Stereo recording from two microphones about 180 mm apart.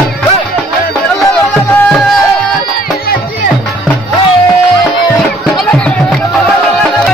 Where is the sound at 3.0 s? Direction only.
50° left (ahead or behind).